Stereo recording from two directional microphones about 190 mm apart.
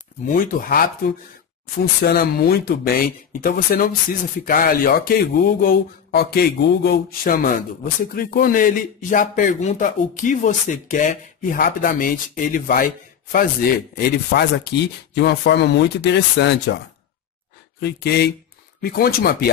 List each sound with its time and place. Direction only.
0.3 s speech: 45° left (ahead or behind)
15.1 s speech: 65° left (ahead or behind)
17.7 s speech: 60° left (ahead or behind)